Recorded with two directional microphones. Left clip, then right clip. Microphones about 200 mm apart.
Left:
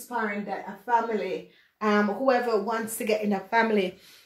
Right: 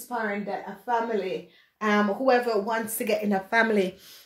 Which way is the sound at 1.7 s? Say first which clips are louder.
Even; 40° right (ahead or behind).